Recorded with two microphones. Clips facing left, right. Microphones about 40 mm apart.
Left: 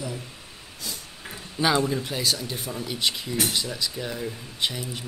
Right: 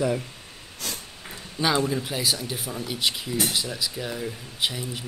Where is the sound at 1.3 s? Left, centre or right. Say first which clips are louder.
Left 1 dB; centre.